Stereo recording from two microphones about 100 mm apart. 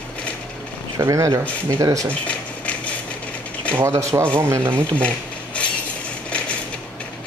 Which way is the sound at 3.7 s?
30° right (ahead or behind).